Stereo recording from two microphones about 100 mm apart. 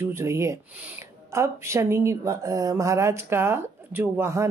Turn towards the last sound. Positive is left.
turn(degrees=-25)  # may be behind; listen again after turning